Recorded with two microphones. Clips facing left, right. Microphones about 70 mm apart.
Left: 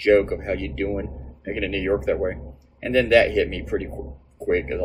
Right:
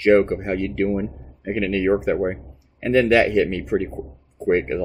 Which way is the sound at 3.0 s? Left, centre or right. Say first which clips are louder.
Even; centre.